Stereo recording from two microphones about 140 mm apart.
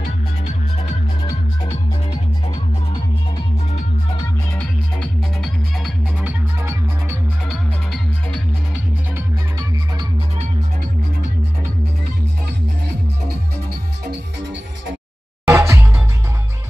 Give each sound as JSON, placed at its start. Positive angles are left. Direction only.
{"t": 4.6, "sound": "music", "side_deg": 10}
{"t": 6.2, "sound": "music", "side_deg": -20}
{"t": 7.4, "sound": "music", "side_deg": 0}
{"t": 15.4, "sound": "music", "side_deg": -20}